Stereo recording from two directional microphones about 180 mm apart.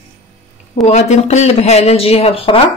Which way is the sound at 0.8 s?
40° left (ahead or behind).